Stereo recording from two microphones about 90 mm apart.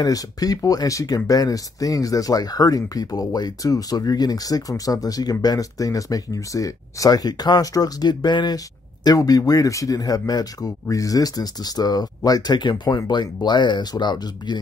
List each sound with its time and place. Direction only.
0.0 s speech: 45° left (ahead or behind)